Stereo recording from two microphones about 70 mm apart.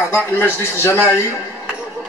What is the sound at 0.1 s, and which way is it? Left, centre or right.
Speech, left.